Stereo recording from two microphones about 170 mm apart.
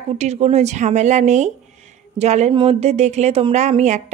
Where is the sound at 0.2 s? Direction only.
40° right (ahead or behind).